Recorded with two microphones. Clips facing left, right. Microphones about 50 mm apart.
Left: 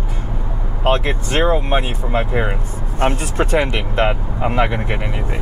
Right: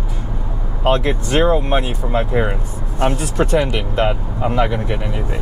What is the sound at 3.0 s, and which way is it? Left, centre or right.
Speech, left.